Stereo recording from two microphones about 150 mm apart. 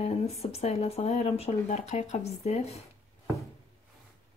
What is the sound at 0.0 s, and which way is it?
Speech, 45° left (ahead or behind).